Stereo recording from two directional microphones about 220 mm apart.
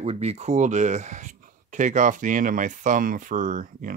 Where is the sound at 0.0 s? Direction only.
30° right (ahead or behind).